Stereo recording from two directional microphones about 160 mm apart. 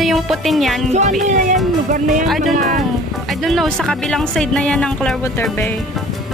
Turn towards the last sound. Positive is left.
turn(degrees=5)  # may be behind; listen again after turning